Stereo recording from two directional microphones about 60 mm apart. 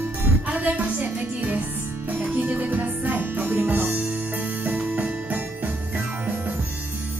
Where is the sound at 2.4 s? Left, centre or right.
Right.